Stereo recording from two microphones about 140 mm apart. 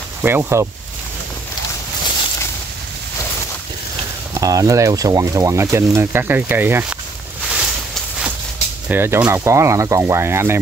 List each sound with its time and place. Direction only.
0.2 s speech: 15° right (ahead or behind)
4.3 s speech: 25° right (ahead or behind)
8.8 s speech: 15° right (ahead or behind)